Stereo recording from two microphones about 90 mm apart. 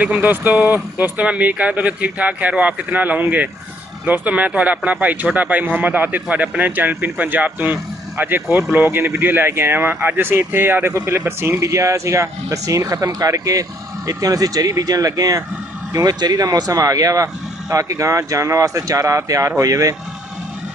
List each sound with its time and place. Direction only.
0.0 s a man's voice: 20° right (ahead or behind); by 20.0 s 35° right (ahead or behind)